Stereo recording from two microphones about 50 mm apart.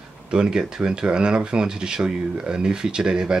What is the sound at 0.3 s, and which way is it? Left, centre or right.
Speech, centre.